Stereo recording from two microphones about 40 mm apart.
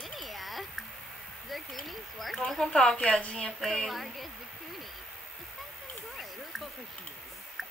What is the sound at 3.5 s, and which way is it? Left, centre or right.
Speech, centre.